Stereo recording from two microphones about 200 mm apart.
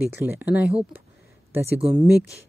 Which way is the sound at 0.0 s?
10° right (ahead or behind).